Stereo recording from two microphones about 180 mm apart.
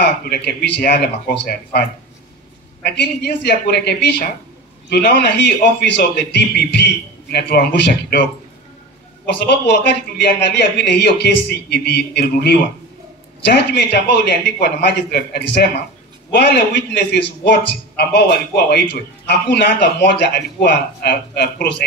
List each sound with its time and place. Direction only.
0.2 s a man's voice: 60° left (ahead or behind)
9.2 s a man's voice: 70° left (ahead or behind)